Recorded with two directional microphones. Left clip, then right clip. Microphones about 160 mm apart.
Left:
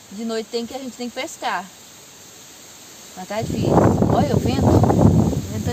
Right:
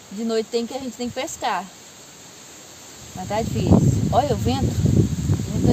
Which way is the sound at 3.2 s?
5° left (ahead or behind).